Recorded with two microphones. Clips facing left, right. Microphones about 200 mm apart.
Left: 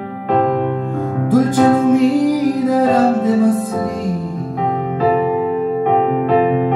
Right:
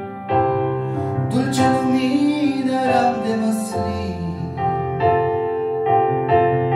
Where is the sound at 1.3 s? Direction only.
45° left (ahead or behind).